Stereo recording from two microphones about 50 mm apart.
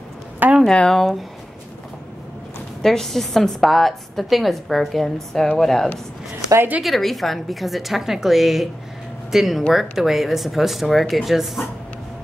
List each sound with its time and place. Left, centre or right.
0.4 s a sound: right
0.7 s speech: centre
2.8 s a woman's voice: centre